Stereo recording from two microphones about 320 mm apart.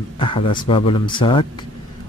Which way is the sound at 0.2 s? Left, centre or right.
Centre.